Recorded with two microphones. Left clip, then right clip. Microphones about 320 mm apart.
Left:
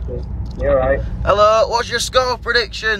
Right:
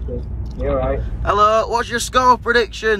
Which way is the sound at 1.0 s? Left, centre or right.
Centre.